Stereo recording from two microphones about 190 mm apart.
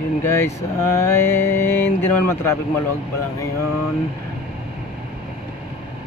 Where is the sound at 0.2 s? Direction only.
10° left (ahead or behind).